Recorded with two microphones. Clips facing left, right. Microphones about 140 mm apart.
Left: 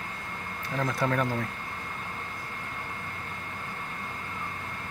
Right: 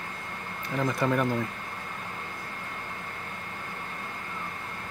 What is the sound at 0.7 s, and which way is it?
Speech, 5° right (ahead or behind).